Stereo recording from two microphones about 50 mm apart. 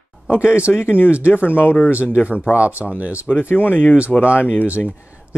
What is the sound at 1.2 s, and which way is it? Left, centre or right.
Speech, left.